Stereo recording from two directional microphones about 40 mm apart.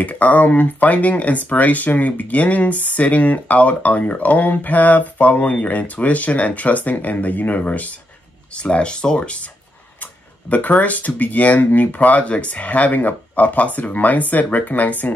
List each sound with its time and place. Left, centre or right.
0.0 s speech: left
8.6 s speech: left
10.5 s speech: left